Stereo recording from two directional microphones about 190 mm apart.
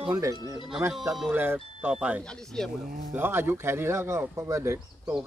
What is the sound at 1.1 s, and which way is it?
Speech, 5° right (ahead or behind).